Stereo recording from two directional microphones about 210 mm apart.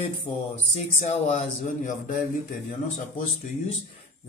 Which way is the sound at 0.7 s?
30° left (ahead or behind).